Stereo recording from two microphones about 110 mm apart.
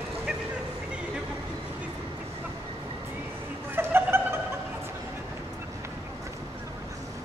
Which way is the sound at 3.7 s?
20° right (ahead or behind).